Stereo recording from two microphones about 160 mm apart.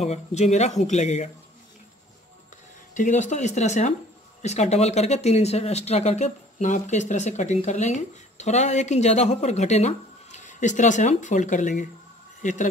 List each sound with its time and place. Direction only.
0.0 s speech: 45° left (ahead or behind)
3.0 s speech: 50° left (ahead or behind)